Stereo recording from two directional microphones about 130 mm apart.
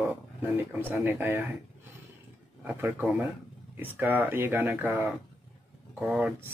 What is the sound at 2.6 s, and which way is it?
Speech, 15° right (ahead or behind).